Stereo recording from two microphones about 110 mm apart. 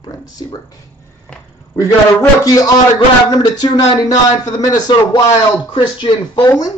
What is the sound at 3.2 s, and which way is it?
A man's voice, 40° left (ahead or behind).